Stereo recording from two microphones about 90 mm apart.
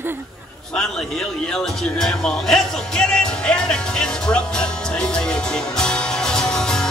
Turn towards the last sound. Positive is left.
turn(degrees=5)  # may be behind; listen again after turning